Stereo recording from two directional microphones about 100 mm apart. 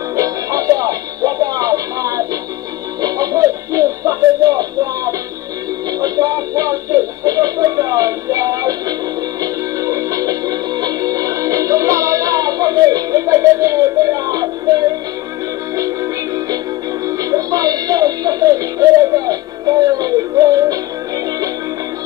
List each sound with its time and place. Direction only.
0.1 s music: 35° right (ahead or behind)